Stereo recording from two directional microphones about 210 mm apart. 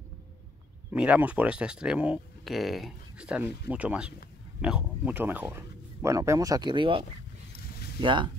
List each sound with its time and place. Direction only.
0.9 s speech: 5° right (ahead or behind); by 8.3 s 25° right (ahead or behind)